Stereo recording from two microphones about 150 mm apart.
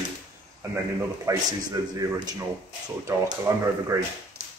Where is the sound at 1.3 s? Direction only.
20° right (ahead or behind).